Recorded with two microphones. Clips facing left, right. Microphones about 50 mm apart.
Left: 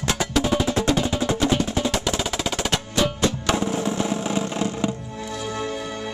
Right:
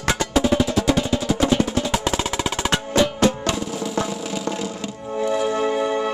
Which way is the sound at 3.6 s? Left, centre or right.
Left.